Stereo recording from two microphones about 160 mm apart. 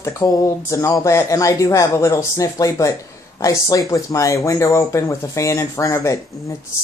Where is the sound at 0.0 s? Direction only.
20° left (ahead or behind).